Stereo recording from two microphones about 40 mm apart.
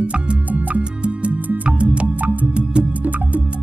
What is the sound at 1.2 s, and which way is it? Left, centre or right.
Music, right.